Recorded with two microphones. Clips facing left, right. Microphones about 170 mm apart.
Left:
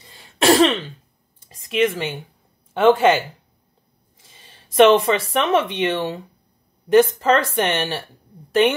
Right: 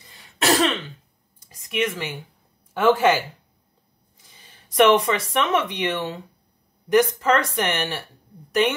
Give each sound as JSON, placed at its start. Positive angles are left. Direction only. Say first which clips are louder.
{"t": 0.4, "sound": "throat clearing", "louder": "left 6 dB", "side_deg": 25}
{"t": 1.4, "sound": "a sound", "louder": "left 6 dB", "side_deg": 30}
{"t": 2.7, "sound": "speech", "louder": "left 3 dB", "side_deg": 25}
{"t": 4.3, "sound": "speech", "louder": "left 2 dB", "side_deg": 25}